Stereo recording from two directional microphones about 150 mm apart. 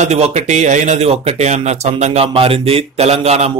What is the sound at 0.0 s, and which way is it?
Speech, 50° right (ahead or behind).